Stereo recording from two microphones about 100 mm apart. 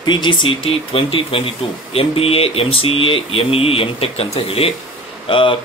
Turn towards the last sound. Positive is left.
turn(degrees=60)  # may be behind; listen again after turning